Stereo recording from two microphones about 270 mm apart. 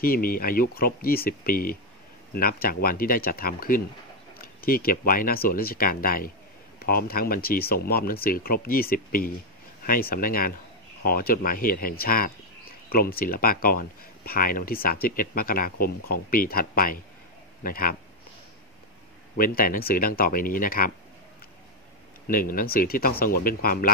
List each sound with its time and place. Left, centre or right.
0.0 s speech: left
19.3 s speech: left
22.3 s speech: left